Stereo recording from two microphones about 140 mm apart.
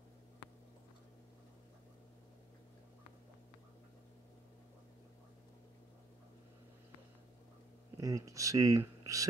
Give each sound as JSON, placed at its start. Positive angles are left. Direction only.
{"t": 8.0, "sound": "speech", "side_deg": -25}